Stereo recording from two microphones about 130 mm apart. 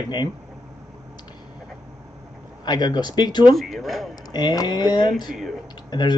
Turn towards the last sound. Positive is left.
turn(degrees=35)  # may be behind; listen again after turning